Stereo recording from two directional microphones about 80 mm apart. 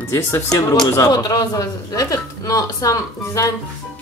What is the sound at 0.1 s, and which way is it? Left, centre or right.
Speech, left.